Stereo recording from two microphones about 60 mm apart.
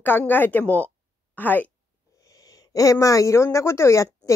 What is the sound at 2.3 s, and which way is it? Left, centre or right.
A woman's voice, left.